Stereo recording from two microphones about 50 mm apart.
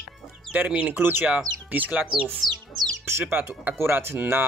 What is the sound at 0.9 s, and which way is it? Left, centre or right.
Speech, right.